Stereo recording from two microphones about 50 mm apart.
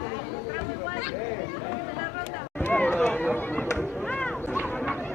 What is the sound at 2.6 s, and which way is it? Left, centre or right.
Run, left.